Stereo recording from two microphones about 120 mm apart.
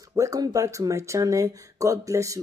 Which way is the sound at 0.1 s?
30° right (ahead or behind).